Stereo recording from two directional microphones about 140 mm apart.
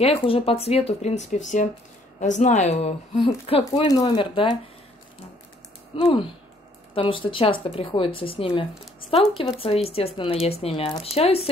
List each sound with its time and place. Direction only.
0.0 s a woman's voice: 40° left (ahead or behind)
3.8 s speech: 30° left (ahead or behind)
5.9 s speech: 40° left (ahead or behind)